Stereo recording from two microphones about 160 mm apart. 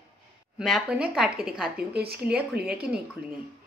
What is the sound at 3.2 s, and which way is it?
Speech, 75° right (ahead or behind).